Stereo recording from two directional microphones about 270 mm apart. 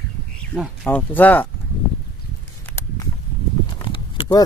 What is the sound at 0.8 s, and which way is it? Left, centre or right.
Speech, centre.